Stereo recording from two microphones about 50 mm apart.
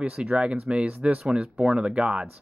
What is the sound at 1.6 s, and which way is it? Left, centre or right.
Speech, centre.